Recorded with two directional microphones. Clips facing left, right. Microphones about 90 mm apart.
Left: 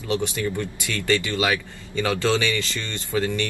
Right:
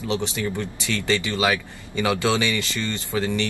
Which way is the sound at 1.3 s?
10° right (ahead or behind).